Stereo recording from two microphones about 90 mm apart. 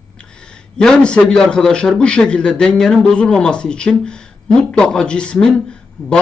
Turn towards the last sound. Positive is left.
turn(degrees=10)  # may be behind; listen again after turning